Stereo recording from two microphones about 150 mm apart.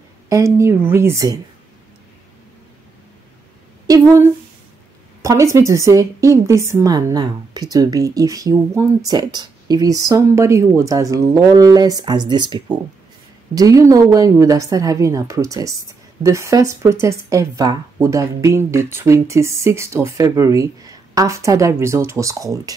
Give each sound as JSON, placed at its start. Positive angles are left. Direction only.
{"t": 0.3, "sound": "a woman's voice", "side_deg": -20}
{"t": 3.8, "sound": "a sound", "side_deg": -20}
{"t": 5.2, "sound": "a woman's voice", "side_deg": -20}